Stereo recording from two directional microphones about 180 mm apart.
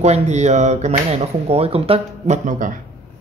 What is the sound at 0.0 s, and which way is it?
Speech, 40° right (ahead or behind).